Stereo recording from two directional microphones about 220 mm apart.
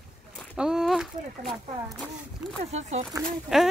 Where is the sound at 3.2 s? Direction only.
Centre (ahead or behind).